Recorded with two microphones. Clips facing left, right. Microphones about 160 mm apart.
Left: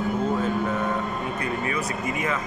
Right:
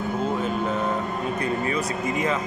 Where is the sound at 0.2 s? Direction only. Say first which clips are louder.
Left 1 dB; 20° right (ahead or behind).